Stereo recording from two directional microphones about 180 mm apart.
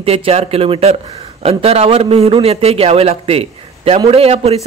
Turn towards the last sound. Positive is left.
turn(degrees=-35)  # may be behind; listen again after turning